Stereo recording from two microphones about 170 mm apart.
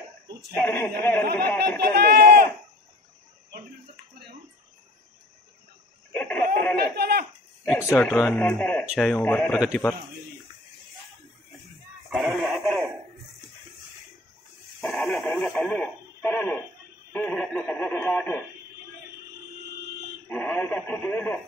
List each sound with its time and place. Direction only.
0.6 s speech: 10° left (ahead or behind)
1.8 s run: 70° right (ahead or behind)
6.1 s snicker: 10° left (ahead or behind)
6.8 s a sound: 70° right (ahead or behind)
7.6 s speech: 15° left (ahead or behind)
12.1 s a sound: centre (ahead or behind)
14.8 s radio: centre (ahead or behind)
20.2 s radio: 10° left (ahead or behind)